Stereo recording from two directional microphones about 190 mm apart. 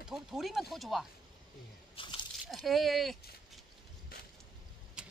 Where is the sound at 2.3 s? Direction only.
Centre (ahead or behind).